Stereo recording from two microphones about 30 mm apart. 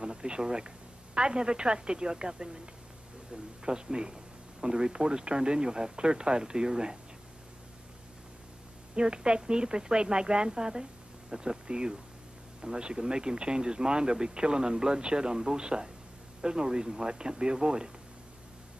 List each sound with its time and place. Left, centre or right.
0.0 s speech: right
8.9 s speech: right